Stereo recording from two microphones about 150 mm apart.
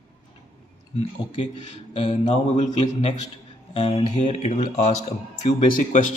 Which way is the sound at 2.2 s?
50° left (ahead or behind).